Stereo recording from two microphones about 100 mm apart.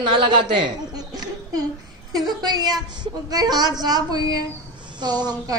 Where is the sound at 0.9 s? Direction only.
40° right (ahead or behind).